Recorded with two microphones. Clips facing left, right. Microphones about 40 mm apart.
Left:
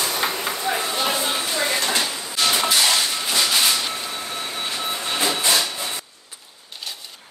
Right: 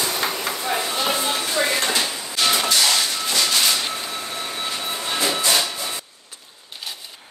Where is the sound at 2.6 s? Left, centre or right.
Centre.